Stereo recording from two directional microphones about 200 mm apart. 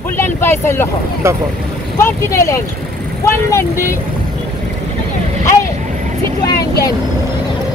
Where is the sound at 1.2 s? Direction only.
15° right (ahead or behind).